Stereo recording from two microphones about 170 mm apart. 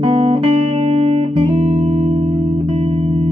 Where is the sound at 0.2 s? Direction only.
35° right (ahead or behind).